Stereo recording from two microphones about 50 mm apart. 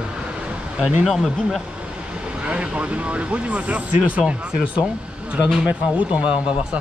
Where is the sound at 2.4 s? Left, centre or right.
Right.